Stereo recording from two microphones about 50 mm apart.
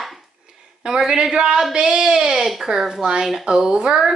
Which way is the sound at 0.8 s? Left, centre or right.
Centre.